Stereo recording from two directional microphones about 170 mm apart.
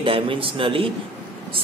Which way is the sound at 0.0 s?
30° right (ahead or behind).